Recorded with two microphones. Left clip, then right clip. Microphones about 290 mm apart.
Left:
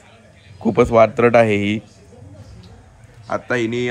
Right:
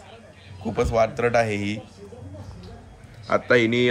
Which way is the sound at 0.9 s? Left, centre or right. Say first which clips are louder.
Left 8 dB; left.